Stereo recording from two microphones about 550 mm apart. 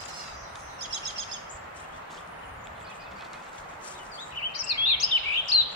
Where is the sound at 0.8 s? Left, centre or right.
Right.